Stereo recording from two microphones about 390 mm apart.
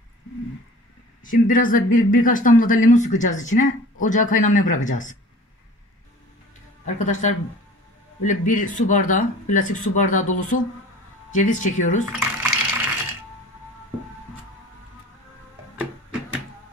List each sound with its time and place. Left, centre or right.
1.2 s speech: centre
7.0 s speech: centre
12.1 s a sound: centre